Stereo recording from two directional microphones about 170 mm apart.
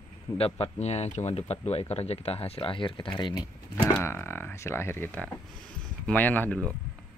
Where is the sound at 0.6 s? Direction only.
40° left (ahead or behind).